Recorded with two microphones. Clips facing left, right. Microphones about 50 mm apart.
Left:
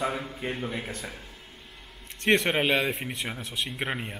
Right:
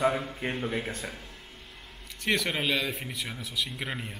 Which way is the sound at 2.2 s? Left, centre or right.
Left.